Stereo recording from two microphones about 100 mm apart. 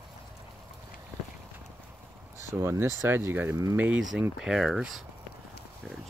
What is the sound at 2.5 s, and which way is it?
Speech, 25° right (ahead or behind).